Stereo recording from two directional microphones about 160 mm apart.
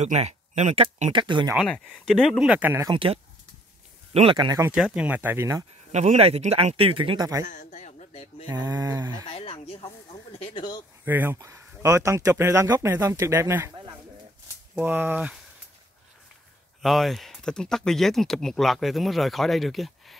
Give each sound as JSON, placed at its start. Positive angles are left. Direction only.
{"t": 0.0, "sound": "speech", "side_deg": -45}
{"t": 1.1, "sound": "a sound", "side_deg": -30}
{"t": 1.7, "sound": "speech", "side_deg": 5}
{"t": 2.9, "sound": "a man's voice", "side_deg": -35}
{"t": 4.4, "sound": "a sound", "side_deg": -25}
{"t": 4.6, "sound": "speech", "side_deg": -5}
{"t": 5.9, "sound": "a man's voice", "side_deg": -45}
{"t": 7.4, "sound": "speech", "side_deg": 50}
{"t": 8.5, "sound": "a sound", "side_deg": -20}
{"t": 9.3, "sound": "speech", "side_deg": 40}
{"t": 11.1, "sound": "speech", "side_deg": -10}
{"t": 14.8, "sound": "speech", "side_deg": -15}
{"t": 16.8, "sound": "speech", "side_deg": 0}